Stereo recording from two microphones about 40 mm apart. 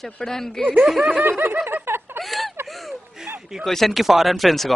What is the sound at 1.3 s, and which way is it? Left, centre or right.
Snicker, right.